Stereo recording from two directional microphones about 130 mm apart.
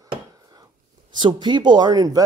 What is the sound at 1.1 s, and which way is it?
Speech, 35° right (ahead or behind).